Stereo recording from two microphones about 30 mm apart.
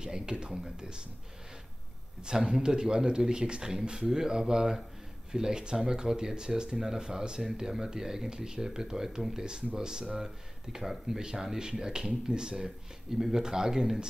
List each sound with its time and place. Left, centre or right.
0.0 s speech: right
2.2 s speech: centre
12.6 s speech: centre